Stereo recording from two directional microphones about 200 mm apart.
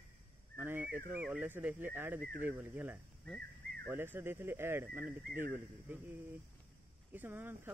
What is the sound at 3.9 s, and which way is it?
Speech, 10° right (ahead or behind).